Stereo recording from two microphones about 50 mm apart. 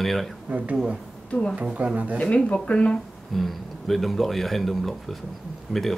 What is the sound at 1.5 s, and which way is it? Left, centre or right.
Speech, right.